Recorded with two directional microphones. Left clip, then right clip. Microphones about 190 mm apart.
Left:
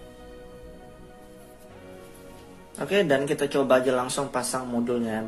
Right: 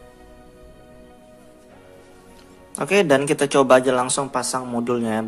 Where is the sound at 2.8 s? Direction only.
25° right (ahead or behind).